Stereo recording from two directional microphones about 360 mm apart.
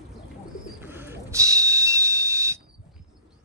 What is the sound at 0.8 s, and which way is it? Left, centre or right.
Whistle, centre.